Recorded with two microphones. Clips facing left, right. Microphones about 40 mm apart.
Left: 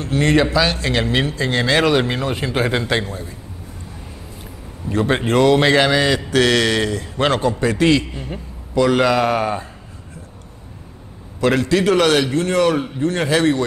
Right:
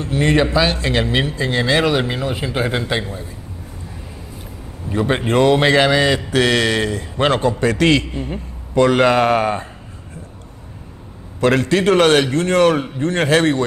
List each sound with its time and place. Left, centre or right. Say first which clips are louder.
0.2 s a man's voice: even; centre
0.5 s mantra: right 1 dB; right
1.7 s a man's voice: left 1 dB; centre
2.0 s speech: left 1 dB; centre
4.9 s a man's voice: even; centre
5.2 s mantra: even; right
7.7 s a man's voice: even; right
11.4 s a man's voice: right 1 dB; right